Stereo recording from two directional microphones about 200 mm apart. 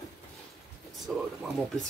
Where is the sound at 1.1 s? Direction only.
Centre (ahead or behind).